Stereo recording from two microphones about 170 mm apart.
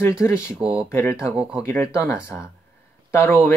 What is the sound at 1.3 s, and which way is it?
Speech, 5° right (ahead or behind).